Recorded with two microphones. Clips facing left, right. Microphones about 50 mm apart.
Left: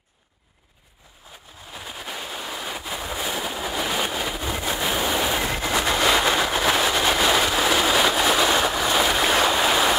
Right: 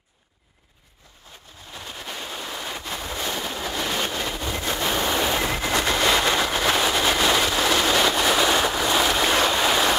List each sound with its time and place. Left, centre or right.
1.7 s ocean: centre